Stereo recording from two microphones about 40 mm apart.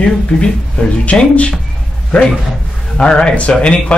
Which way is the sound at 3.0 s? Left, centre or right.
Left.